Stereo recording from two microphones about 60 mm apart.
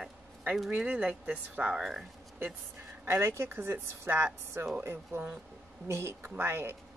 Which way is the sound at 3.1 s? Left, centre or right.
Right.